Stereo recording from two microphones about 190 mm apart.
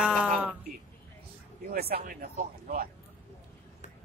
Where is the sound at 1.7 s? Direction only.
55° right (ahead or behind).